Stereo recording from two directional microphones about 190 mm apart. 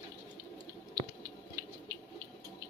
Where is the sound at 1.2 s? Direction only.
20° right (ahead or behind).